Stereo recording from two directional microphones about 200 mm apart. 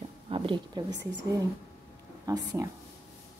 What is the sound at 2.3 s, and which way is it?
Speech, 15° right (ahead or behind).